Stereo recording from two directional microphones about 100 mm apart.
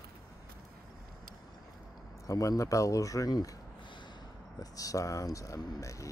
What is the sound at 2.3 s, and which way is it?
Speech, 35° left (ahead or behind).